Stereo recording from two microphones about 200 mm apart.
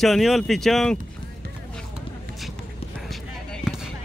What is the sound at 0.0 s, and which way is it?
Speech, centre (ahead or behind).